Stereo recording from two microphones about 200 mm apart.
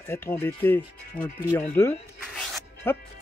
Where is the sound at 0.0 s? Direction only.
10° left (ahead or behind).